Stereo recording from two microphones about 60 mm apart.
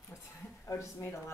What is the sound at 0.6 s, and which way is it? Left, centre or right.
Speech, left.